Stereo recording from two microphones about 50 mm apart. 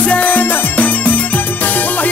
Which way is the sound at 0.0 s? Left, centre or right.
Left.